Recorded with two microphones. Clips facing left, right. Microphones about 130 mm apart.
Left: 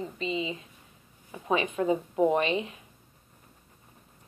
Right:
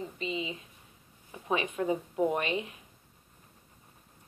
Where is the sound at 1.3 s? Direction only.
25° left (ahead or behind).